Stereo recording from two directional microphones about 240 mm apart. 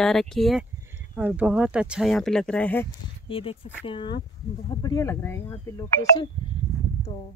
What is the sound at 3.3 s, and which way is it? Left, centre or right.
Speech, left.